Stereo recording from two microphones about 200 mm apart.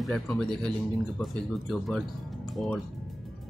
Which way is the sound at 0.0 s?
Centre (ahead or behind).